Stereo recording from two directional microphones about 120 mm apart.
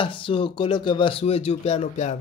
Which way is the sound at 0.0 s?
45° left (ahead or behind).